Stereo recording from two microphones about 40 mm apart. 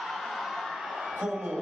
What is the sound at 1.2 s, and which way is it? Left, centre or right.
Speech, centre.